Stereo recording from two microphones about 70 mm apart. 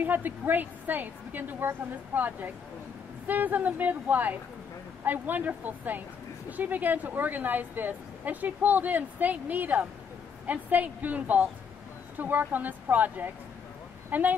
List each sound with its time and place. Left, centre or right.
0.0 s a woman's voice: right